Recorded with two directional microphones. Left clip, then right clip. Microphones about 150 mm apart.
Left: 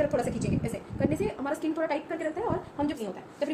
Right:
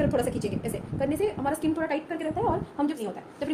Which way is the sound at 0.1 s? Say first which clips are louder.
Right 2 dB; 40° right (ahead or behind).